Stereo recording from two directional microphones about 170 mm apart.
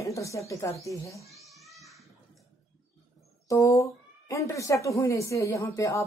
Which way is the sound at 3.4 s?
20° left (ahead or behind).